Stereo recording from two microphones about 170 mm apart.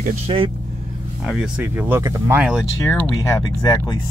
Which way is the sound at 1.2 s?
5° right (ahead or behind).